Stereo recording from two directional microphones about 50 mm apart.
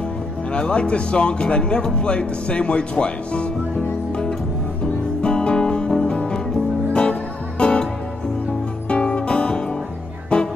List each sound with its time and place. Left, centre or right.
0.5 s speech: centre
5.2 s music: left
8.8 s music: left